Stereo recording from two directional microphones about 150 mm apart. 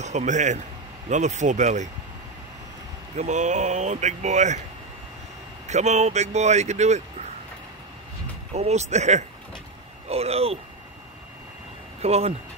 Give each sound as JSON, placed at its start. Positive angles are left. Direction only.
{"t": 0.0, "sound": "speech", "side_deg": -50}
{"t": 3.2, "sound": "speech", "side_deg": -50}
{"t": 5.7, "sound": "speech", "side_deg": -50}
{"t": 8.5, "sound": "speech", "side_deg": -45}
{"t": 12.0, "sound": "speech", "side_deg": -40}